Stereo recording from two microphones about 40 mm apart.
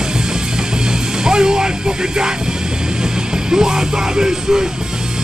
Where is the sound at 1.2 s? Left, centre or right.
Centre.